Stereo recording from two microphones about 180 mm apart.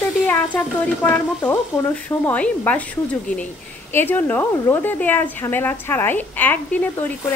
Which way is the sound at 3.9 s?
10° left (ahead or behind).